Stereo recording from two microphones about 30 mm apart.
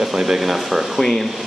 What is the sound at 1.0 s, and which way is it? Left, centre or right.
Speech, centre.